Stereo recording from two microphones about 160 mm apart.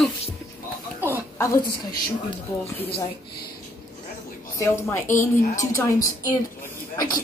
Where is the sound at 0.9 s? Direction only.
10° right (ahead or behind).